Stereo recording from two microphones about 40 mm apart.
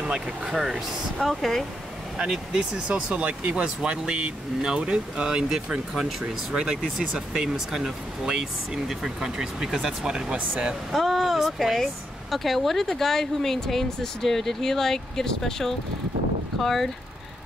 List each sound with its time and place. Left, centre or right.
0.5 s speech: centre
2.1 s speech: centre
2.9 s speech: right
5.9 s speech: centre
6.2 s speech: centre
10.3 s speech: right
10.9 s speech: centre